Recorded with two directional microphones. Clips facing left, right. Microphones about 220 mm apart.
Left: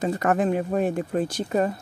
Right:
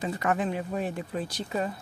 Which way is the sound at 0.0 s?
45° left (ahead or behind).